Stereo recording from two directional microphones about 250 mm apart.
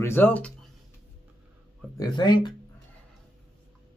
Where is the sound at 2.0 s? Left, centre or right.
Centre.